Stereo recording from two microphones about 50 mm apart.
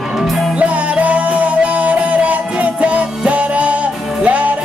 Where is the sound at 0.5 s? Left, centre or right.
Right.